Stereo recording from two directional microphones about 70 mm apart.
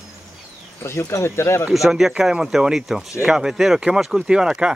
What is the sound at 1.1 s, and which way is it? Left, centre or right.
Speech, left.